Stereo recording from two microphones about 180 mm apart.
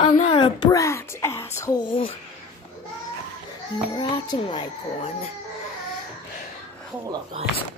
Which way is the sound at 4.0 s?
25° left (ahead or behind).